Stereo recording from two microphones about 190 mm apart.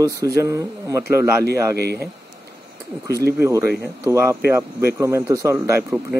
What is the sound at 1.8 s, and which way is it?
Speech, 55° right (ahead or behind).